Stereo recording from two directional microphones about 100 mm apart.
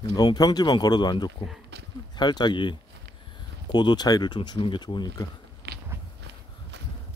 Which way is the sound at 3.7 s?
45° left (ahead or behind).